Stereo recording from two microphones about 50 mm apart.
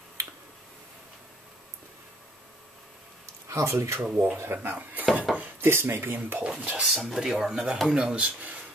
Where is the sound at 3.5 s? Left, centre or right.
Right.